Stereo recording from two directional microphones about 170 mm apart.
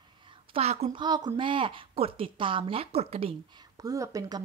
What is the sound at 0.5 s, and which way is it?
Speech, 40° right (ahead or behind).